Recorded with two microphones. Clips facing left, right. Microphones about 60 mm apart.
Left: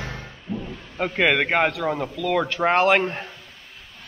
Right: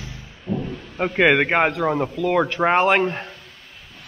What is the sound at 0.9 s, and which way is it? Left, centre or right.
A man's voice, centre.